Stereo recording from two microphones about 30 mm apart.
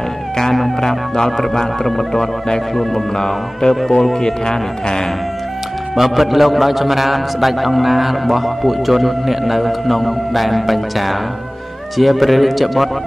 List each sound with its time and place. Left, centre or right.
0.4 s speech: centre
1.9 s a man's voice: centre
3.2 s speech: left
5.9 s a man's voice: centre